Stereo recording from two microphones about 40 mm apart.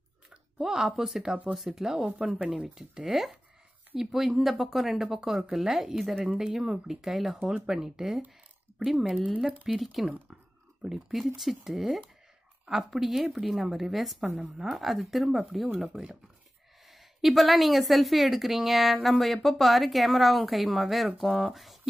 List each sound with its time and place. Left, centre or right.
0.6 s a woman's voice: centre
1.9 s speech: right
2.1 s a woman's voice: centre
6.2 s a woman's voice: centre